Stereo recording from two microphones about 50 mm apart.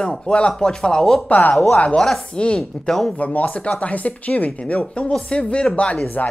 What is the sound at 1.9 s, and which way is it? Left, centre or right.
Speech, centre.